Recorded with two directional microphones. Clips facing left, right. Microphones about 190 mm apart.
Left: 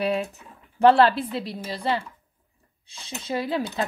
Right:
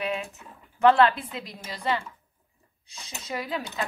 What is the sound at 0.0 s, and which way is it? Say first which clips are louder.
A woman's voice: left 6 dB; 35° left (ahead or behind).